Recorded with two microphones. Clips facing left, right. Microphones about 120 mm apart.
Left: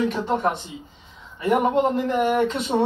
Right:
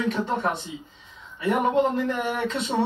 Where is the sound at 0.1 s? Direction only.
20° left (ahead or behind).